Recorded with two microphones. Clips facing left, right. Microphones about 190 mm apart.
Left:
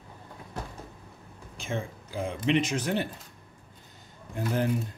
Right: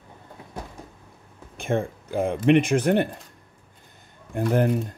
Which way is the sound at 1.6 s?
55° right (ahead or behind).